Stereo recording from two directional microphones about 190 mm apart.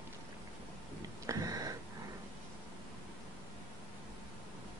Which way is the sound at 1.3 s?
20° right (ahead or behind).